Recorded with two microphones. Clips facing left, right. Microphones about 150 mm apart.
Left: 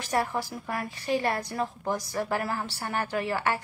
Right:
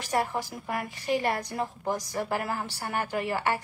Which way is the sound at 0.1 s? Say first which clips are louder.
Even; 15° right (ahead or behind).